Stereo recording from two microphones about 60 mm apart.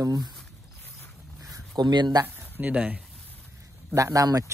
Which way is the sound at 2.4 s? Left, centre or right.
Right.